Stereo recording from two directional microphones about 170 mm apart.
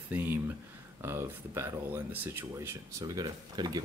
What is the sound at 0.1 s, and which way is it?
Speech, 10° right (ahead or behind).